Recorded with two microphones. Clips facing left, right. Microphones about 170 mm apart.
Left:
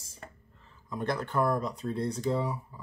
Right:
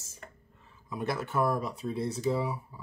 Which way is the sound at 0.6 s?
10° right (ahead or behind).